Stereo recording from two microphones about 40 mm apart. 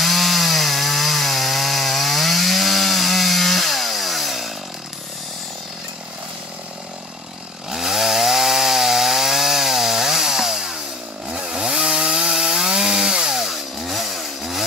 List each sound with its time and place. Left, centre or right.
0.0 s chainsaw: centre
7.7 s chainsaw: centre